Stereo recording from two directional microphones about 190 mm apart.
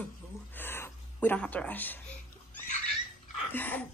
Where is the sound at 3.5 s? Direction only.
10° left (ahead or behind).